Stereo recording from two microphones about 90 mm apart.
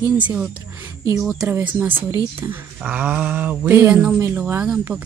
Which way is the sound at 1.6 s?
15° right (ahead or behind).